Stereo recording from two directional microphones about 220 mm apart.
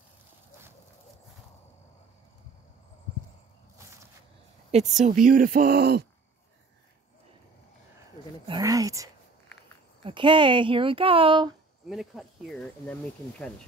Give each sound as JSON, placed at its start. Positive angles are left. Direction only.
{"t": 5.0, "sound": "speech", "side_deg": -35}
{"t": 8.5, "sound": "a sound", "side_deg": -15}
{"t": 10.0, "sound": "speech", "side_deg": -20}
{"t": 11.9, "sound": "speech", "side_deg": 0}